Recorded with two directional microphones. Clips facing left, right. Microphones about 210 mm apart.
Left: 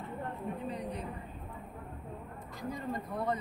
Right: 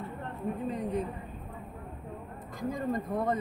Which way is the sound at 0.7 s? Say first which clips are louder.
Right 6 dB; 50° right (ahead or behind).